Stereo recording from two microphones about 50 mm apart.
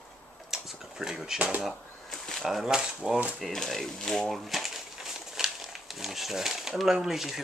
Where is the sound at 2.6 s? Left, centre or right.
Centre.